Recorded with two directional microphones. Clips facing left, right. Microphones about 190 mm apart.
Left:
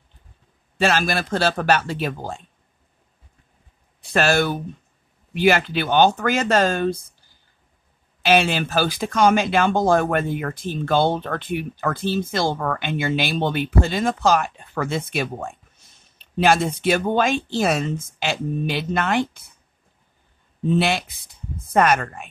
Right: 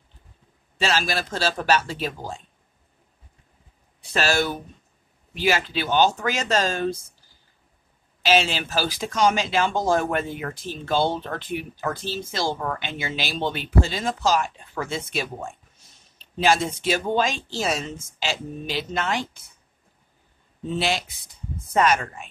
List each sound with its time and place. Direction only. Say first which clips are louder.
0.7 s speech: left 4 dB; 55° left (ahead or behind)
4.1 s speech: left 4 dB; 55° left (ahead or behind)
8.2 s speech: left 3 dB; 55° left (ahead or behind)
20.7 s speech: left 5 dB; 55° left (ahead or behind)